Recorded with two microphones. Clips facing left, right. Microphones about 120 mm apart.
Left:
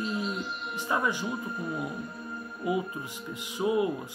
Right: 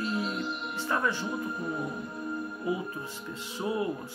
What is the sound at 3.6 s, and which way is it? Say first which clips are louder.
Speech: left 4 dB; 15° left (ahead or behind).